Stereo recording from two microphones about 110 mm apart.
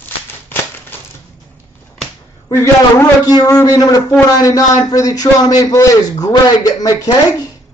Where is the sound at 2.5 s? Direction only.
30° left (ahead or behind).